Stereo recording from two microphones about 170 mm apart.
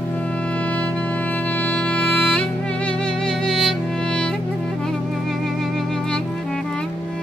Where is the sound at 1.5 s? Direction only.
10° left (ahead or behind).